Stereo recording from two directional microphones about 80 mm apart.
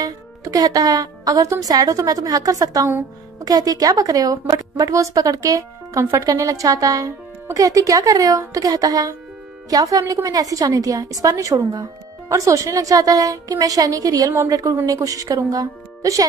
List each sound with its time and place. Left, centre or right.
0.0 s a woman's voice: right